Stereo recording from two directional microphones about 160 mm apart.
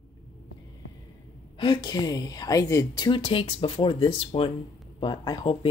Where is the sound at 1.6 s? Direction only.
30° left (ahead or behind).